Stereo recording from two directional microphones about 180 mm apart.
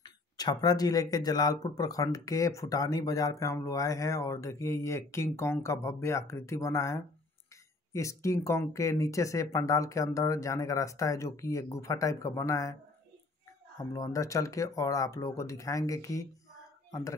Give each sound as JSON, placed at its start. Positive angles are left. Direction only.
{"t": 0.0, "sound": "speech", "side_deg": 20}
{"t": 13.9, "sound": "speech", "side_deg": 20}